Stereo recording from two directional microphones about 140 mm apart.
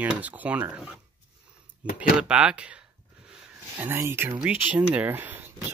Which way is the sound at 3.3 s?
15° right (ahead or behind).